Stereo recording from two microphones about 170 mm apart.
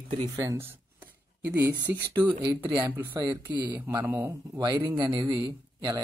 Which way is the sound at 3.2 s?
25° right (ahead or behind).